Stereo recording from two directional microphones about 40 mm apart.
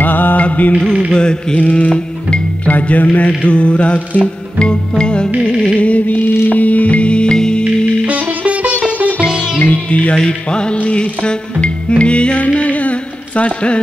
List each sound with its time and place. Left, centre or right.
0.0 s mantra: left
0.4 s music: left
0.7 s music: centre
1.6 s music: left
2.7 s music: left
4.6 s music: left
5.8 s music: left; by 7.6 s centre
7.6 s music: right
9.6 s music: left
10.1 s music: left